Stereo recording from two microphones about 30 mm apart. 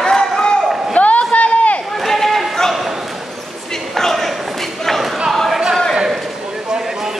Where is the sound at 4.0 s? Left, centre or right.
Centre.